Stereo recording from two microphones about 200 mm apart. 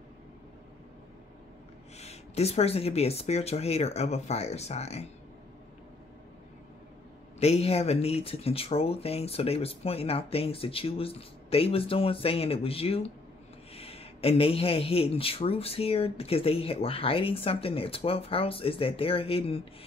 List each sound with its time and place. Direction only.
2.0 s speech: 30° left (ahead or behind)
7.3 s a man's voice: 30° left (ahead or behind)